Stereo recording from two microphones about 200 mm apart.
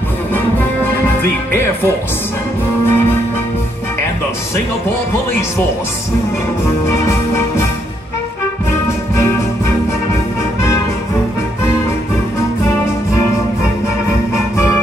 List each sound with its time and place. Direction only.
2.9 s music: 10° left (ahead or behind)
6.9 s music: 15° left (ahead or behind)